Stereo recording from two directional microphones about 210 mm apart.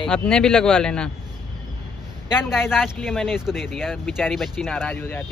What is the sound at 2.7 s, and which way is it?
Speech, centre (ahead or behind).